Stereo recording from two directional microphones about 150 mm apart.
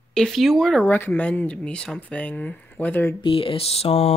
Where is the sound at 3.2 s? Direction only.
35° left (ahead or behind).